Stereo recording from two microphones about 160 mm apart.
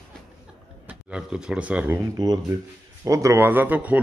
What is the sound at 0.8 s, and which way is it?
Speech, 5° right (ahead or behind).